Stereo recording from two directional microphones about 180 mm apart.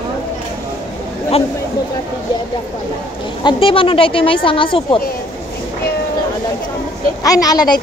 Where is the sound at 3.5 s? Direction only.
30° left (ahead or behind).